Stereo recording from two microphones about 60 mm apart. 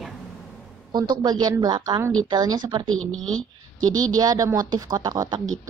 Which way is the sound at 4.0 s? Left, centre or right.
Right.